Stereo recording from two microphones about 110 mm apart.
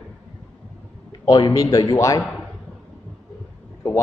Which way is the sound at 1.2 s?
45° left (ahead or behind).